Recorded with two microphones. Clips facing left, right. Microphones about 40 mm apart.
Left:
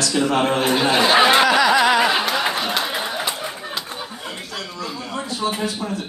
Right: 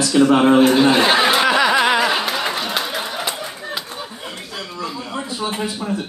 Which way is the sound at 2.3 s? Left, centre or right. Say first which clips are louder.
Left 1 dB; centre.